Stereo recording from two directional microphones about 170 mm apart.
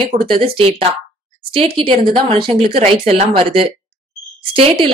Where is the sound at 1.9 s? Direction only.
30° right (ahead or behind).